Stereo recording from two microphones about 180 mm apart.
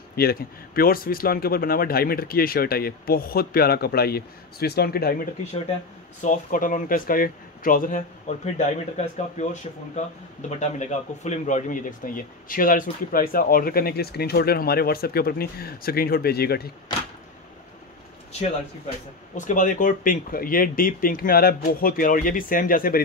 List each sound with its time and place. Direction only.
0.1 s speech: 60° left (ahead or behind)
6.2 s a man's voice: 45° left (ahead or behind)
19.3 s a man's voice: 45° left (ahead or behind)